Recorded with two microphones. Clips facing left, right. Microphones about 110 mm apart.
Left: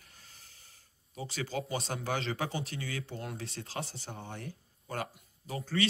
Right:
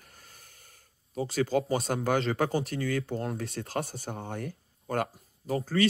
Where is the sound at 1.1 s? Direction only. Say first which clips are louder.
Right 10 dB; 40° right (ahead or behind).